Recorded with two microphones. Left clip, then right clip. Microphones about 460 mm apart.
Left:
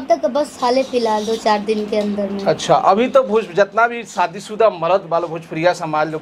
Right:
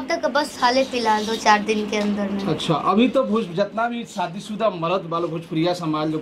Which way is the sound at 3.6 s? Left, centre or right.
Left.